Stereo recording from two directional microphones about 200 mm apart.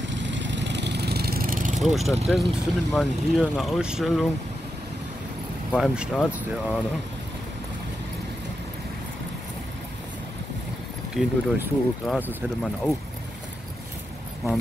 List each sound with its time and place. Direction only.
0.0 s vehicle: 65° right (ahead or behind); by 1.8 s 45° right (ahead or behind)
1.8 s speech: centre (ahead or behind)
5.7 s speech: centre (ahead or behind)
11.1 s speech: 5° right (ahead or behind)